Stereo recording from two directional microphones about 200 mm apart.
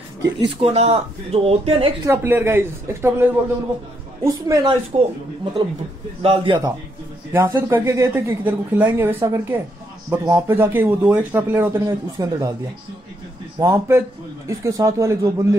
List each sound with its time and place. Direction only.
0.6 s speech: 30° right (ahead or behind)
2.0 s speech: 10° right (ahead or behind)
13.6 s speech: 15° right (ahead or behind)